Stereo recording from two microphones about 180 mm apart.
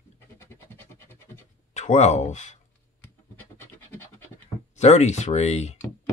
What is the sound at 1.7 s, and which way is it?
Speech, 40° left (ahead or behind).